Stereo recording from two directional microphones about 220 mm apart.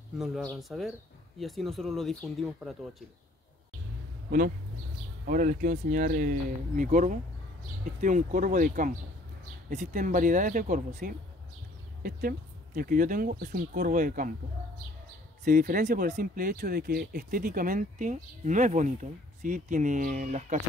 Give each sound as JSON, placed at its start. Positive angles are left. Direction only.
{"t": 0.2, "sound": "speech", "side_deg": 0}
{"t": 5.2, "sound": "speech", "side_deg": -35}
{"t": 15.4, "sound": "speech", "side_deg": -40}